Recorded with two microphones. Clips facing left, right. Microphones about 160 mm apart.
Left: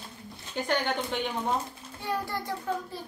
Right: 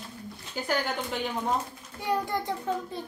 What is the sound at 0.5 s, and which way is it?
Speech, 5° right (ahead or behind).